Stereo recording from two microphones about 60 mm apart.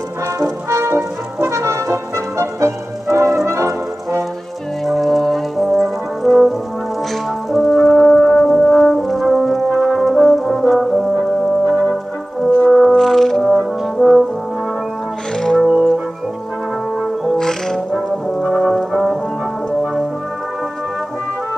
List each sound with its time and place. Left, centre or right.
0.4 s music: right
4.8 s brass instrument: centre
7.5 s french horn: centre
13.5 s brass instrument: centre
15.3 s music: centre
15.6 s music: centre
17.4 s music: centre
18.3 s brass instrument: centre
18.9 s music: centre
19.8 s brass instrument: centre